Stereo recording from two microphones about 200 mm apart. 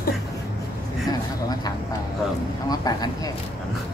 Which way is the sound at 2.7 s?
20° left (ahead or behind).